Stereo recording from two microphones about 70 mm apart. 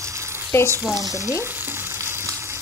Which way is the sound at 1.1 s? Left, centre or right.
Left.